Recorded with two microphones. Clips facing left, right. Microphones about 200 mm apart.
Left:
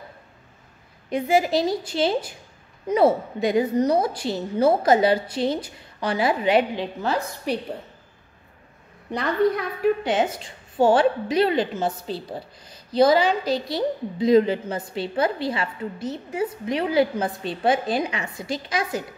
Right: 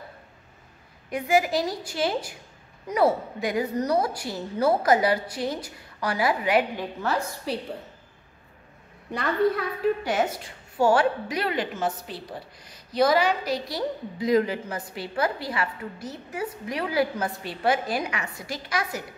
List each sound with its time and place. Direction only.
1.1 s a woman's voice: 25° left (ahead or behind)
9.1 s a woman's voice: 15° left (ahead or behind)